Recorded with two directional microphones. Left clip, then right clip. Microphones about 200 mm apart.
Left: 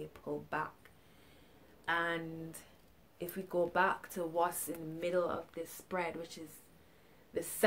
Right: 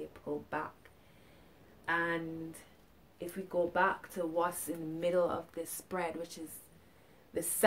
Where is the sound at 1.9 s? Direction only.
10° left (ahead or behind).